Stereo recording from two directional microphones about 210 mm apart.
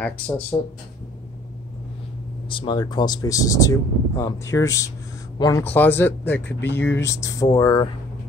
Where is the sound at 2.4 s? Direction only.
20° left (ahead or behind).